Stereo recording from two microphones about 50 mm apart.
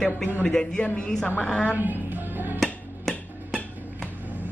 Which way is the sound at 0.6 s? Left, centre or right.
Centre.